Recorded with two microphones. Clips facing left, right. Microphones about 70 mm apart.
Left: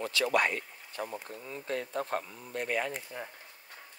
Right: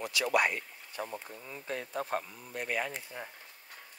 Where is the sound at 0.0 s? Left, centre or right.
Centre.